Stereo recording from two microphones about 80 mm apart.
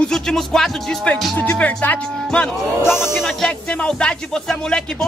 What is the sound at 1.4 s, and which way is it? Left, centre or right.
Speech, centre.